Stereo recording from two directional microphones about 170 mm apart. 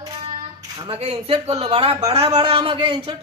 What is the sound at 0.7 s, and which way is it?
A man's voice, 30° right (ahead or behind).